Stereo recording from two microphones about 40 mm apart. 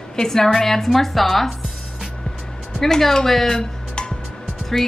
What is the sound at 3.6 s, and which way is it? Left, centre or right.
Music, centre.